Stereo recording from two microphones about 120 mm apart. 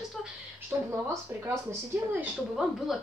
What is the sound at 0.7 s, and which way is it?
Speech, 20° right (ahead or behind).